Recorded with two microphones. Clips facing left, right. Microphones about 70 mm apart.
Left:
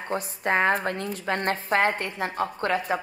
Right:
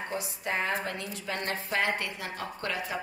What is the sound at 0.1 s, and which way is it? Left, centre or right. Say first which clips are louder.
A woman's voice: left 10 dB; left.